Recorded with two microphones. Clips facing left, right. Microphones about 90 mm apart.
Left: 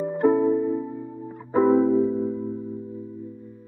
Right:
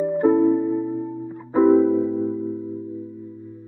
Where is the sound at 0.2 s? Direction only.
5° left (ahead or behind).